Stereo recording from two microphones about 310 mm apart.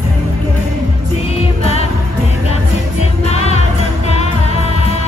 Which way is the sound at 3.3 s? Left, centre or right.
Centre.